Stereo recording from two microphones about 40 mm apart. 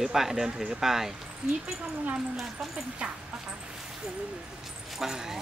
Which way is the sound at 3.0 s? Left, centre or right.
Right.